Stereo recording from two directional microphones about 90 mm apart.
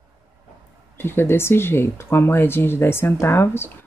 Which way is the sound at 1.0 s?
25° left (ahead or behind).